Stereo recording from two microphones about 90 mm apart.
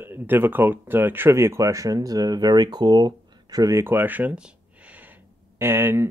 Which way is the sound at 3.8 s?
25° right (ahead or behind).